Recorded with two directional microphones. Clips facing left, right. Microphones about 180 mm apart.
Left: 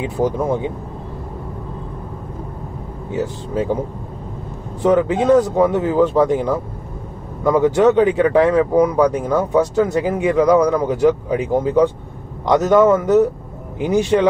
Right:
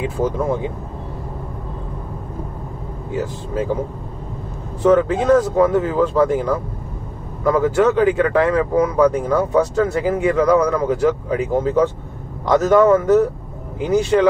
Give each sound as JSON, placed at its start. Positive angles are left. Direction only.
{"t": 0.0, "sound": "speech", "side_deg": 20}
{"t": 4.8, "sound": "speech", "side_deg": 15}